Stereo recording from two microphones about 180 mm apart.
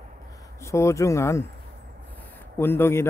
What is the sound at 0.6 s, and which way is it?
Speech, 15° left (ahead or behind).